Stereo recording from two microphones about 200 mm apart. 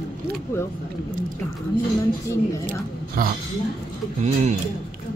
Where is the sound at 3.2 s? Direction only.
45° right (ahead or behind).